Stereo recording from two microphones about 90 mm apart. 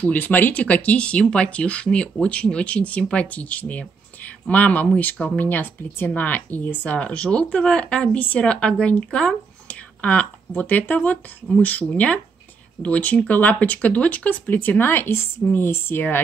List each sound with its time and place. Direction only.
0.0 s speech: 20° left (ahead or behind)
5.4 s speech: 20° left (ahead or behind)